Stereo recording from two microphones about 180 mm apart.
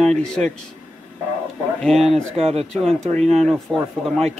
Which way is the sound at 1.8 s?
Centre (ahead or behind).